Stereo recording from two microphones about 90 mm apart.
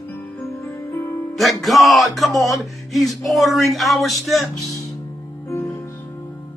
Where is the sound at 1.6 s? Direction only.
Centre (ahead or behind).